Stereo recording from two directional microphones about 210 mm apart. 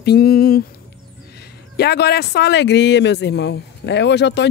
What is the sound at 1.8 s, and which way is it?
Speech, 50° left (ahead or behind).